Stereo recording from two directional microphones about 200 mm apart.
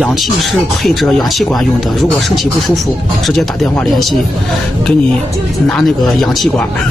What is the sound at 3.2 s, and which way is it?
Speech, centre (ahead or behind).